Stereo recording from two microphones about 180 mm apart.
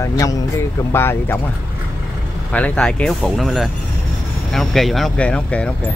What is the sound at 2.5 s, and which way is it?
Speech, 5° left (ahead or behind).